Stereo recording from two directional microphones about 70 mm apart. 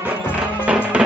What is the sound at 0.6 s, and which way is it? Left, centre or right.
Music, centre.